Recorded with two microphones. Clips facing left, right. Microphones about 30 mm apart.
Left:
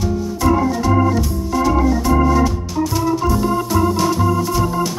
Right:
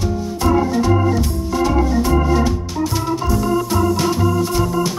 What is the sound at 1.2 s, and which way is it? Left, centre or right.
Organ, centre.